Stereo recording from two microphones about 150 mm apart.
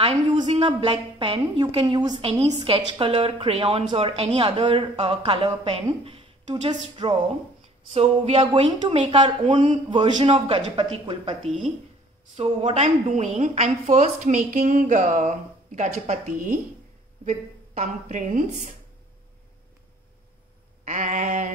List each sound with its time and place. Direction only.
0.0 s a woman's voice: 40° right (ahead or behind)
10.3 s a woman's voice: 40° right (ahead or behind)
12.4 s a woman's voice: 45° right (ahead or behind)
20.8 s a sound: 55° right (ahead or behind)